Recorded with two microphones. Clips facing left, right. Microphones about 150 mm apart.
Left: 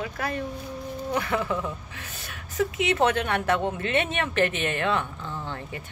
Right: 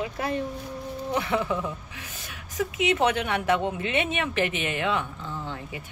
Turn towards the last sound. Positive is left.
turn(degrees=-10)  # may be behind; listen again after turning